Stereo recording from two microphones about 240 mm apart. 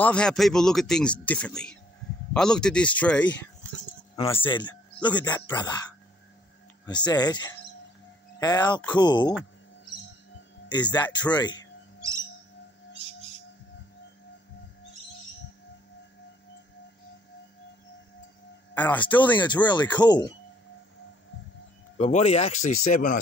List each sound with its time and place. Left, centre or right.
0.0 s speech: centre
4.4 s speech: centre
6.9 s speech: centre
10.7 s speech: centre
18.8 s speech: centre
19.1 s speech: centre
21.9 s speech: left